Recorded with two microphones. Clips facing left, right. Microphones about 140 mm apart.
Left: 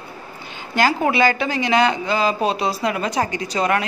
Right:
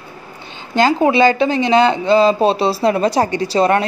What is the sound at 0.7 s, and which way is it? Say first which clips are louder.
A woman's voice: right 5 dB; 25° right (ahead or behind).